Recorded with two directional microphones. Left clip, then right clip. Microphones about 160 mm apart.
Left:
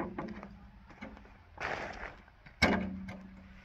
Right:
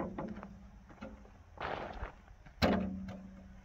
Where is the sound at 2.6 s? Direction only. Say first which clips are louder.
Left 3 dB; 15° right (ahead or behind).